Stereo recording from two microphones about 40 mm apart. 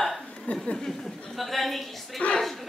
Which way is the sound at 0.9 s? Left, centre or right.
Centre.